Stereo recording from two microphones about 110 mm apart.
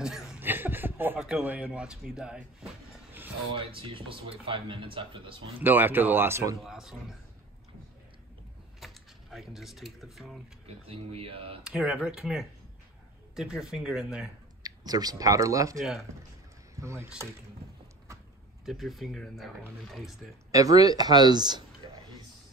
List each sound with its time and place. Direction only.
0.0 s a sound: 5° right (ahead or behind)
0.4 s chuckle: 20° right (ahead or behind)
1.4 s speech: 15° right (ahead or behind)
3.5 s speech: 60° right (ahead or behind)
5.6 s speech: 20° right (ahead or behind)
6.6 s speech: 5° right (ahead or behind)
8.8 s speech: centre (ahead or behind)
10.9 s speech: 60° right (ahead or behind)
11.6 s speech: 5° right (ahead or behind)
14.6 s speech: 35° right (ahead or behind)
16.8 s speech: 25° right (ahead or behind)
18.7 s speech: centre (ahead or behind)
20.5 s speech: 30° right (ahead or behind)